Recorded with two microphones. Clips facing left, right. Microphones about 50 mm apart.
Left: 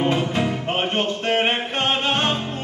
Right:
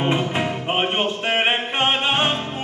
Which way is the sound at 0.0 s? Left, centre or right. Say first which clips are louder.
Even; right.